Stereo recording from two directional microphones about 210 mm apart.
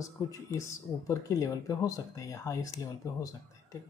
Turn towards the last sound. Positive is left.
turn(degrees=15)  # may be behind; listen again after turning